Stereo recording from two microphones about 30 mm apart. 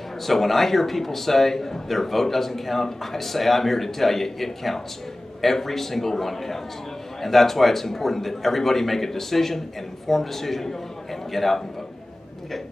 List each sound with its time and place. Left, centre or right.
0.3 s a man's voice: centre